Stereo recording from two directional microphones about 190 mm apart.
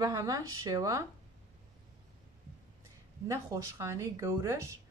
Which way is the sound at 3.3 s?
15° right (ahead or behind).